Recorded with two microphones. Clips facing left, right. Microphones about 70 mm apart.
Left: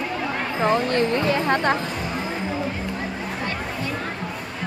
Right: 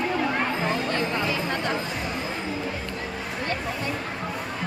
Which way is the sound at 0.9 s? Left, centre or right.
Left.